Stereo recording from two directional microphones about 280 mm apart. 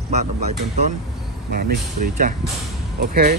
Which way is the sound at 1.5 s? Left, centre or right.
Right.